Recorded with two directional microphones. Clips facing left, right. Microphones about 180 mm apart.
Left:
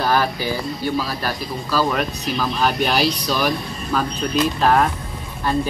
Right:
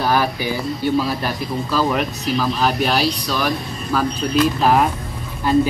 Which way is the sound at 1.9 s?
5° right (ahead or behind).